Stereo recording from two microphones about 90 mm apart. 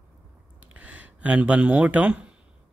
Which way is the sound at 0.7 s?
15° right (ahead or behind).